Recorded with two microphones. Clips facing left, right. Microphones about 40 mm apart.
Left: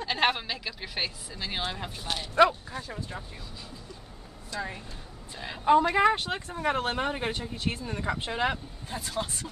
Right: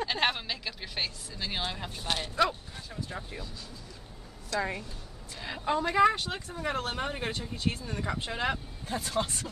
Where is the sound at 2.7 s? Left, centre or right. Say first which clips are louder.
Left 4 dB; left.